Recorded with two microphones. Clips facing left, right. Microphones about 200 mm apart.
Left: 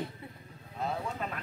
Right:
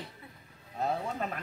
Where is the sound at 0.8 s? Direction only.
45° right (ahead or behind).